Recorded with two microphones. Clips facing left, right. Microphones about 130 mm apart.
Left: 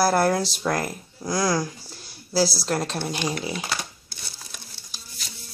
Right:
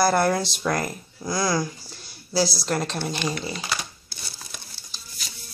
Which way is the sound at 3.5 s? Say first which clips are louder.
Left 1 dB; 50° left (ahead or behind).